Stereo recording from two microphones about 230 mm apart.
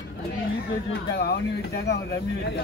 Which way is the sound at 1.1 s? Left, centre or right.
Left.